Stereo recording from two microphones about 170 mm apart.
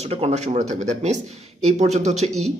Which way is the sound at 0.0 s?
40° right (ahead or behind).